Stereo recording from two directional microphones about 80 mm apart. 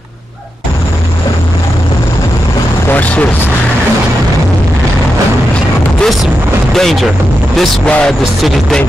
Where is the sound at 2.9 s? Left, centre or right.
Centre.